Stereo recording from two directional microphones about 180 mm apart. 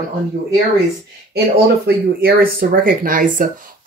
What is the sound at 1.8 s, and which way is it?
Speech, 60° right (ahead or behind).